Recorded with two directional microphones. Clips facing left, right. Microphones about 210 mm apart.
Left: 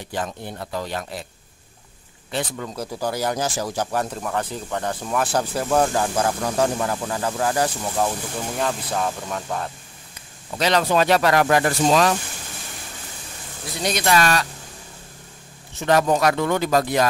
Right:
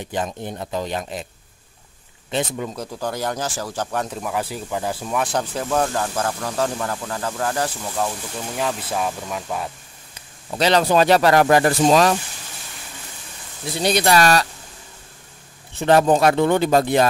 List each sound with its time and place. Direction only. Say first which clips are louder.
0.0 s speech: right 3 dB; 20° right (ahead or behind)
2.3 s speech: right 3 dB; 15° right (ahead or behind)
2.7 s speech: left 1 dB; 5° left (ahead or behind)
8.5 s speech: right 1 dB; 5° right (ahead or behind)
10.6 s speech: right 3 dB; 30° right (ahead or behind)
13.8 s speech: right 3 dB; 35° right (ahead or behind)
15.8 s speech: right 3 dB; 30° right (ahead or behind)